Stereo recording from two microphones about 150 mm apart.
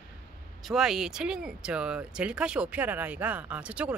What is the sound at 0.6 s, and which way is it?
Speech, 5° right (ahead or behind).